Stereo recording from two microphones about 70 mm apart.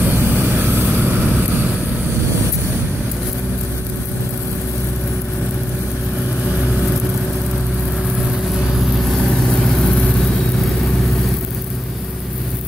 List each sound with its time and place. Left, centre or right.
0.0 s vehicle: right